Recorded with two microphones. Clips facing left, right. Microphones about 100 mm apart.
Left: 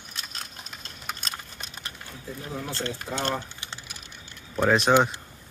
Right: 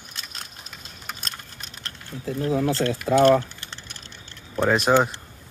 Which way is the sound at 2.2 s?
85° right.